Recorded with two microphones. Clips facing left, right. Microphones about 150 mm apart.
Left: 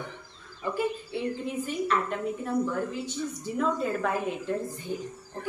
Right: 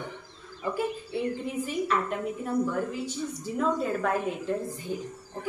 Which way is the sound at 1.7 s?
5° right (ahead or behind).